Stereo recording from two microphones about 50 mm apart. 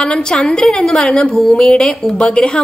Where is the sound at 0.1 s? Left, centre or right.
Centre.